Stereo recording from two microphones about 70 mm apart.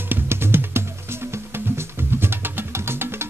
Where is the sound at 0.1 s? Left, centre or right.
Right.